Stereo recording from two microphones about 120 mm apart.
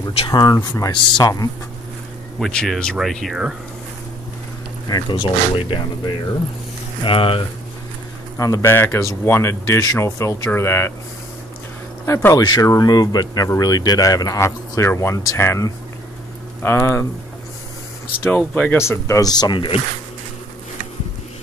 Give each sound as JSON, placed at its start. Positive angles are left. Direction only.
{"t": 0.3, "sound": "speech", "side_deg": 35}
{"t": 2.3, "sound": "speech", "side_deg": 5}
{"t": 4.8, "sound": "speech", "side_deg": 35}
{"t": 8.4, "sound": "speech", "side_deg": 25}
{"t": 12.1, "sound": "speech", "side_deg": 20}
{"t": 12.4, "sound": "speech", "side_deg": 35}
{"t": 18.2, "sound": "speech", "side_deg": 15}